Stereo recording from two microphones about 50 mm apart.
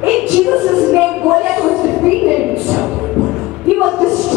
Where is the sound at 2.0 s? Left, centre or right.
Right.